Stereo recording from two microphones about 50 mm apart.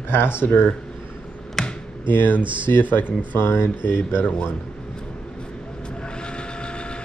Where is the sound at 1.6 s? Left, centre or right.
Centre.